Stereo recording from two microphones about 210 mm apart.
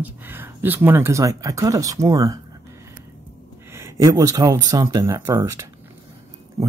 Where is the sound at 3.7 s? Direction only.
15° right (ahead or behind).